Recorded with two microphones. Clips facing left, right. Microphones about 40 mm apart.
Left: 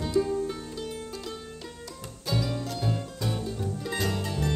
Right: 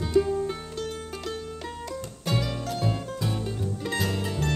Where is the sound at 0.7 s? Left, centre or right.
Right.